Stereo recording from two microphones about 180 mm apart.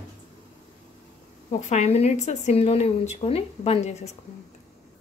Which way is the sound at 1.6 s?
40° left (ahead or behind).